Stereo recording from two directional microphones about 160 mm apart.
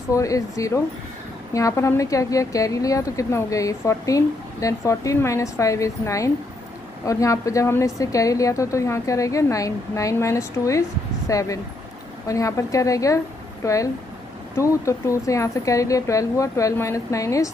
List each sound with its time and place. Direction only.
0.1 s a woman's voice: 20° left (ahead or behind)